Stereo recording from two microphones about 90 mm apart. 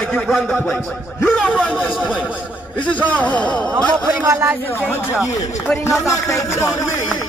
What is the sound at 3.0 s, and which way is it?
Speech, 15° left (ahead or behind).